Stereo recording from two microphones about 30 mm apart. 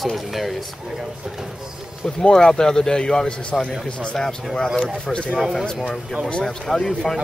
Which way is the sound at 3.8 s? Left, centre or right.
Left.